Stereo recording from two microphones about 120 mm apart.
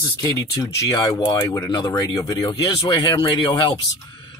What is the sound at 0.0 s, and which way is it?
Speech, 25° left (ahead or behind).